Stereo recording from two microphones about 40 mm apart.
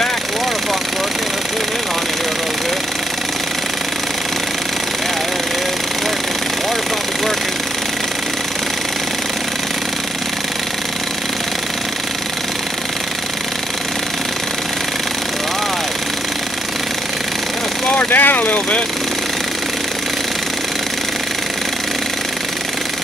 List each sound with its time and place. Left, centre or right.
17.9 s vehicle: left